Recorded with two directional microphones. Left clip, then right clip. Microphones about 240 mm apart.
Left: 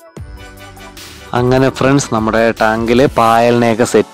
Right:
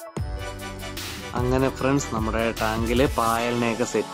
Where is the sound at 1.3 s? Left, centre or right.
Left.